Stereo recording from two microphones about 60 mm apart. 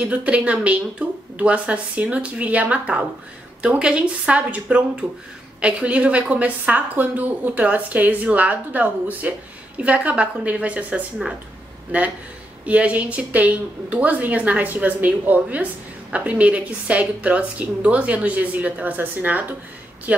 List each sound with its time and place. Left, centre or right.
0.0 s a woman's voice: right
5.6 s a woman's voice: centre
12.6 s a woman's voice: right